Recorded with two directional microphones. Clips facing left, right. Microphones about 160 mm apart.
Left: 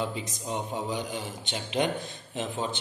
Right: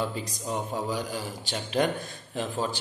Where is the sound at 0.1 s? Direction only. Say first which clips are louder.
Right 1 dB; 20° left (ahead or behind).